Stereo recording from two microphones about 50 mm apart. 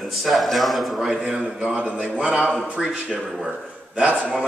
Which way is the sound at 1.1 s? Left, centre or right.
Centre.